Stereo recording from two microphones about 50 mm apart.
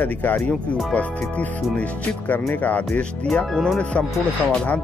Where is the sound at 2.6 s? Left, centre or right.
Left.